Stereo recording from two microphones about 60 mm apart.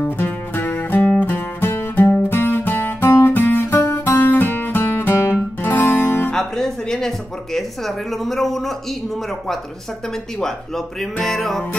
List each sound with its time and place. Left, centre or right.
0.0 s music: left
3.1 s music: left
3.3 s music: left
5.1 s music: left
5.6 s music: left
6.3 s speech: centre
11.0 s music: centre